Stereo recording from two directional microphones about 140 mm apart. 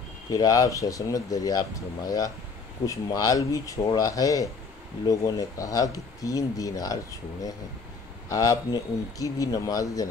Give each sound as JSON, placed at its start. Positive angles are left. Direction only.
{"t": 0.3, "sound": "speech", "side_deg": 25}